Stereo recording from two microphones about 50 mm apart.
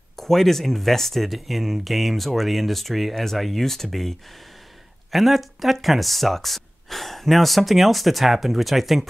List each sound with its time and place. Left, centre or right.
0.1 s speech: centre
5.1 s speech: centre